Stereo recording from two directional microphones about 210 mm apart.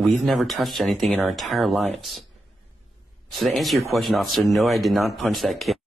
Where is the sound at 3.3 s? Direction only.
Centre (ahead or behind).